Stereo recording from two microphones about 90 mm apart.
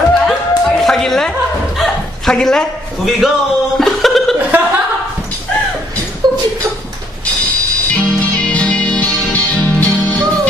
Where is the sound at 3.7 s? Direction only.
5° left (ahead or behind).